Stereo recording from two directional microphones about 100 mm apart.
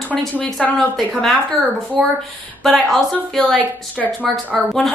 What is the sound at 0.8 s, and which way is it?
A woman's voice, centre (ahead or behind).